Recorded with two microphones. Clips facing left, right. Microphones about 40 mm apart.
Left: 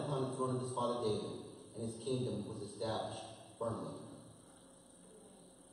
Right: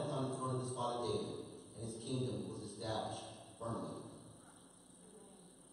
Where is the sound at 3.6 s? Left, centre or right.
Left.